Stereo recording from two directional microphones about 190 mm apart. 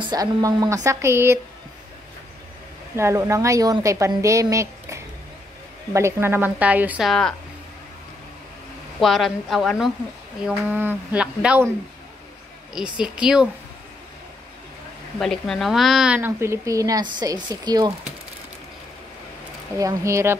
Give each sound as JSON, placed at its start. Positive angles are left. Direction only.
{"t": 0.0, "sound": "a woman's voice", "side_deg": -20}
{"t": 3.0, "sound": "a woman's voice", "side_deg": -15}
{"t": 9.0, "sound": "a woman's voice", "side_deg": 0}
{"t": 12.7, "sound": "speech", "side_deg": -5}
{"t": 15.1, "sound": "a woman's voice", "side_deg": 0}
{"t": 19.8, "sound": "a woman's voice", "side_deg": -15}